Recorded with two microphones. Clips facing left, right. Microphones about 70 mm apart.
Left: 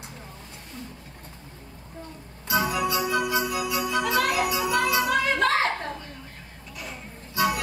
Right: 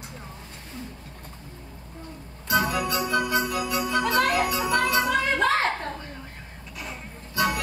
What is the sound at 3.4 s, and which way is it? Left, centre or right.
Jingle bell, centre.